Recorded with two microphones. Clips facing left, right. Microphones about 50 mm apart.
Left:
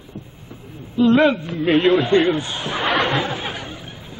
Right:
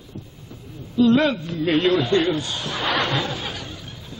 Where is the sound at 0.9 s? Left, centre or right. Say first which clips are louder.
Left 2 dB; left.